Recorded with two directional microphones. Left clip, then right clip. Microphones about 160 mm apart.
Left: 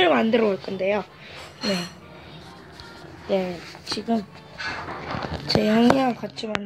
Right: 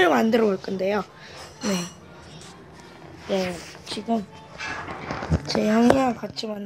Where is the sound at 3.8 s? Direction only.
5° left (ahead or behind).